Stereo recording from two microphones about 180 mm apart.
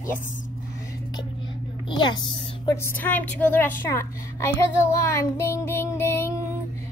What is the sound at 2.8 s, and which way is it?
A woman's voice, 10° left (ahead or behind).